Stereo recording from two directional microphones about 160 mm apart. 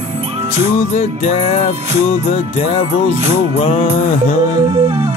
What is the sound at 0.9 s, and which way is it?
Speech, 45° left (ahead or behind).